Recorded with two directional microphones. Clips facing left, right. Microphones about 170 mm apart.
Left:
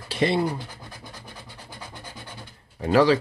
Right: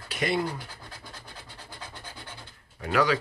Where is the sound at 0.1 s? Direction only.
30° left (ahead or behind).